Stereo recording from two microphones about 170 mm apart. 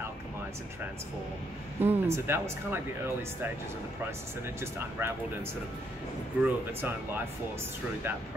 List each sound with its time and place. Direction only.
1.8 s speech: 15° right (ahead or behind)
4.6 s speech: 15° right (ahead or behind)
6.4 s speech: 10° right (ahead or behind)